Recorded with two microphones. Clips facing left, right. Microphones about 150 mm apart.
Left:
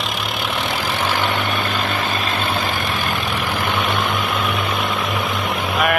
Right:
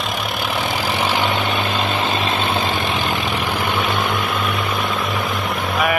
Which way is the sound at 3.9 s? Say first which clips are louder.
Even; centre (ahead or behind).